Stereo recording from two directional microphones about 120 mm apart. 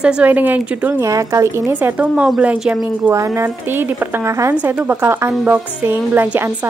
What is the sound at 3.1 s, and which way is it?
A woman's voice, 25° right (ahead or behind).